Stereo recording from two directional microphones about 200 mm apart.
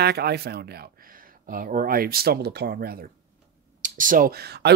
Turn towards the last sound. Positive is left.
turn(degrees=-55)  # may be behind; listen again after turning